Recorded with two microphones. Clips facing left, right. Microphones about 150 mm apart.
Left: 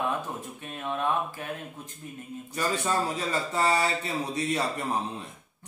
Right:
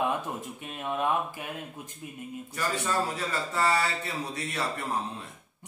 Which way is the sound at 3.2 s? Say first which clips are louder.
Left 2 dB; 20° left (ahead or behind).